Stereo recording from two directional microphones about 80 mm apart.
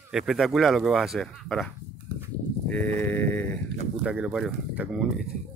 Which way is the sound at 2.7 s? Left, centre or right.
Centre.